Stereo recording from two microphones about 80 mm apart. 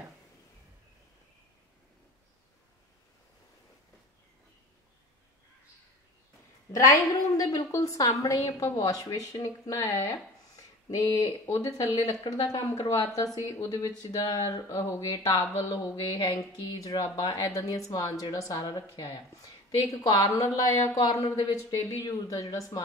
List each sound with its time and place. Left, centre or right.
6.7 s a woman's voice: left
11.4 s speech: left
11.7 s a woman's voice: left